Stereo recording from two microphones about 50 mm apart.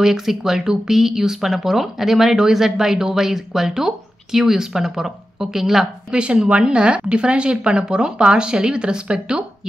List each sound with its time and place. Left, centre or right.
0.0 s speech: centre
6.1 s speech: centre